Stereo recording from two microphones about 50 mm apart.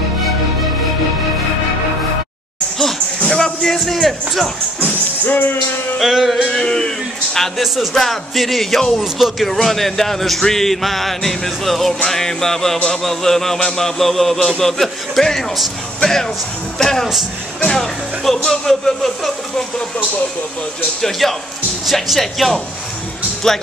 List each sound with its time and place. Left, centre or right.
3.3 s speech: centre
4.8 s speech: left
5.9 s speech: centre
6.5 s a man's voice: centre
7.3 s a man's voice: centre
21.0 s speech: centre
23.4 s a man's voice: centre